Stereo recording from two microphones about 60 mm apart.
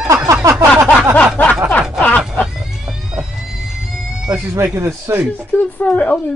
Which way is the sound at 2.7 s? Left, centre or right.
Centre.